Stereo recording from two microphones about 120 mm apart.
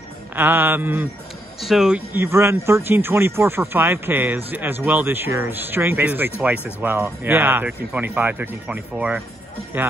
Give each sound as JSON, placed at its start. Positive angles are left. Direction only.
{"t": 0.4, "sound": "speech", "side_deg": -15}
{"t": 1.6, "sound": "speech", "side_deg": -5}
{"t": 2.1, "sound": "speech", "side_deg": -20}